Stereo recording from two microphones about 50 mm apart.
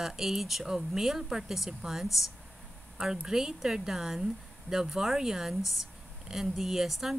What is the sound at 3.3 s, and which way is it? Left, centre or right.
Speech, centre.